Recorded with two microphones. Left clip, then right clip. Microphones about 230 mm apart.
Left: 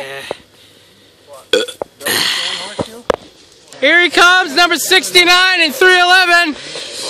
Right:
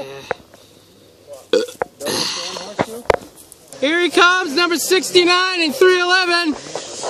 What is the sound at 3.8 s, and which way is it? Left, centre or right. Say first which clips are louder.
Speech: left 5 dB; centre.